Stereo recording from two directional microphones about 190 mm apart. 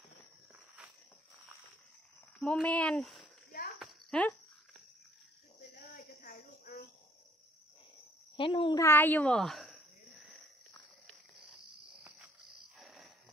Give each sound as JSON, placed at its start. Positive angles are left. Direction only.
{"t": 2.4, "sound": "speech", "side_deg": 5}
{"t": 3.8, "sound": "a sound", "side_deg": 5}
{"t": 5.9, "sound": "cricket", "side_deg": 45}
{"t": 8.4, "sound": "a child's voice", "side_deg": 25}
{"t": 8.8, "sound": "speech", "side_deg": 10}
{"t": 12.7, "sound": "cricket", "side_deg": 0}